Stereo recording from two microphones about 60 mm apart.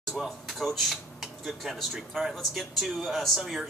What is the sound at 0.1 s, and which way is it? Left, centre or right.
Speech, centre.